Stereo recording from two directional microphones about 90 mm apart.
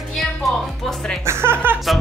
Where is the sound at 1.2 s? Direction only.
25° right (ahead or behind).